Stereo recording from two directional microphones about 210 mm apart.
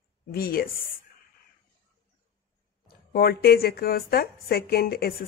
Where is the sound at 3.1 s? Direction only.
50° left (ahead or behind).